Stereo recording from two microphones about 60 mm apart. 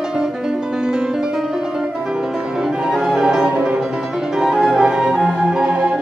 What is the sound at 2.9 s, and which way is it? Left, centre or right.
Music, centre.